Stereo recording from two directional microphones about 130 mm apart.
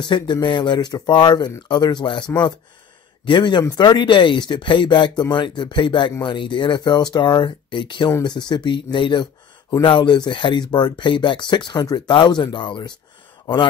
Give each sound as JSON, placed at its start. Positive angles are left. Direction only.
{"t": 0.0, "sound": "speech", "side_deg": 35}